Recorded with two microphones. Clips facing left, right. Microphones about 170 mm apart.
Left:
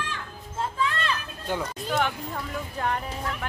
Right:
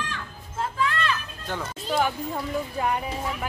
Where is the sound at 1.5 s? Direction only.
10° left (ahead or behind).